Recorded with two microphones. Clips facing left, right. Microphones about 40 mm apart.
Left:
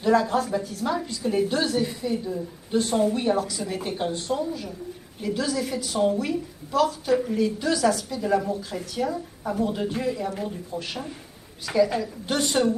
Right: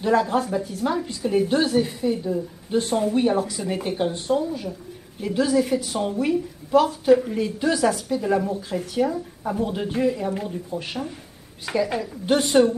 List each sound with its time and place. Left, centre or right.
0.0 s a woman's voice: centre